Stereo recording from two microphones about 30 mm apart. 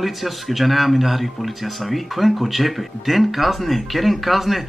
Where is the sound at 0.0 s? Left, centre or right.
Centre.